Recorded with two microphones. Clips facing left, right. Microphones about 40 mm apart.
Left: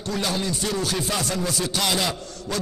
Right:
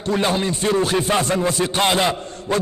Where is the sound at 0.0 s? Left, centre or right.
Right.